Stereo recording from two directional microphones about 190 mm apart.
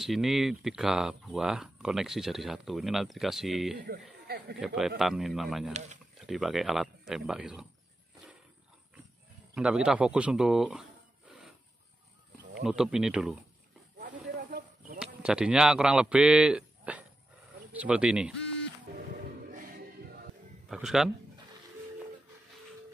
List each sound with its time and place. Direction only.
0.0 s speech: centre (ahead or behind)
3.7 s a man's voice: 55° right (ahead or behind)
4.6 s speech: centre (ahead or behind)
5.7 s speech: 35° right (ahead or behind)
6.2 s speech: 5° right (ahead or behind)
9.6 s speech: 5° right (ahead or behind)
12.6 s speech: centre (ahead or behind)
13.9 s snake: 50° right (ahead or behind)
15.0 s speech: 5° right (ahead or behind)
20.6 s a man's voice: centre (ahead or behind)